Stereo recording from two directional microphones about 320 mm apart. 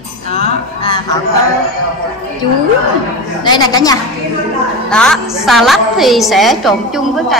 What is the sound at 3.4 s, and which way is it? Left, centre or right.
A woman's voice, centre.